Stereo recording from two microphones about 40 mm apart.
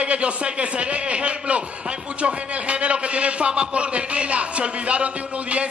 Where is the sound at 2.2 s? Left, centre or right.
Right.